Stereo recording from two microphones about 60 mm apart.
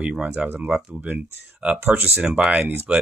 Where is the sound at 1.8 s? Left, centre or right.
Right.